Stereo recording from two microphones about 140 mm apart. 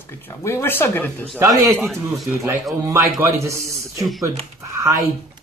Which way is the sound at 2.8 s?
15° right (ahead or behind).